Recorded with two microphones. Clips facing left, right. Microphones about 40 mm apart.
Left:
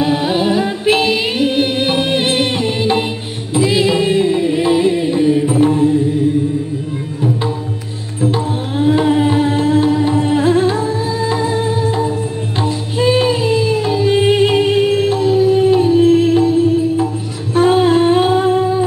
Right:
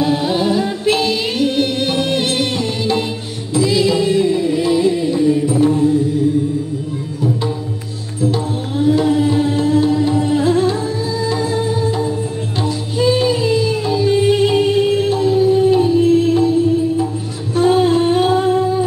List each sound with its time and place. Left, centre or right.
0.0 s music: left
8.2 s tabla: left
12.6 s music: left
17.6 s humming: left